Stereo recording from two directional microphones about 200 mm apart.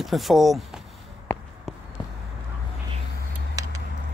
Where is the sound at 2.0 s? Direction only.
20° left (ahead or behind).